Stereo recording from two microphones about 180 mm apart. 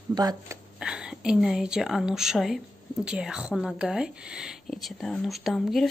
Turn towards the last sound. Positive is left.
turn(degrees=0)  # may be behind; listen again after turning